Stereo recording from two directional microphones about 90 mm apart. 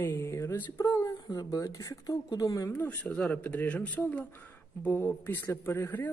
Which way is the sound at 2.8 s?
15° left (ahead or behind).